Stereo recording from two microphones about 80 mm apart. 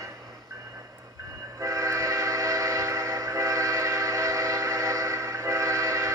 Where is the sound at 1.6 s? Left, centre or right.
Right.